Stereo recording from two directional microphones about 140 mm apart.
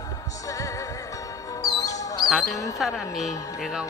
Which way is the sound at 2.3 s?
Centre (ahead or behind).